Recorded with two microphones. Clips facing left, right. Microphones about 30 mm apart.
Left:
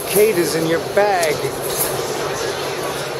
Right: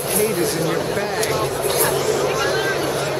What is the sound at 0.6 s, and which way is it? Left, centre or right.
Speech, left.